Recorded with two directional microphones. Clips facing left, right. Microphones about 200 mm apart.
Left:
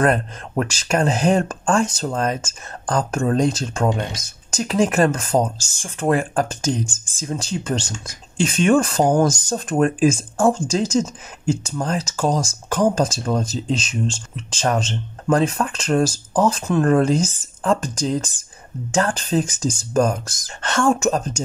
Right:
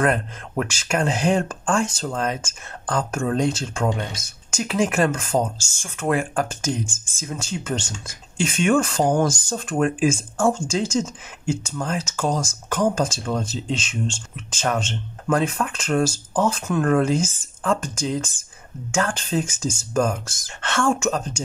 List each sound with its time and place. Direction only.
0.0 s speech: 35° left (ahead or behind)